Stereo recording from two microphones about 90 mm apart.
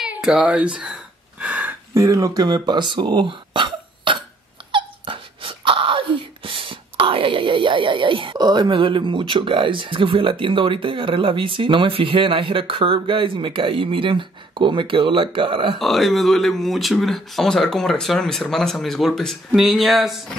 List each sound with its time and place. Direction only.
0.2 s speech: 5° right (ahead or behind)
1.4 s a sound: 15° right (ahead or behind)
2.0 s speech: 35° right (ahead or behind); by 4.2 s 65° right (ahead or behind)
4.7 s a sound: 70° right (ahead or behind)
8.4 s speech: 50° right (ahead or behind); by 15.8 s 70° right (ahead or behind)
15.8 s speech: centre (ahead or behind)